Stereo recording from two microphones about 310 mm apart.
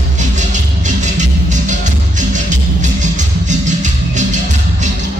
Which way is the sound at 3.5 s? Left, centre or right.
Right.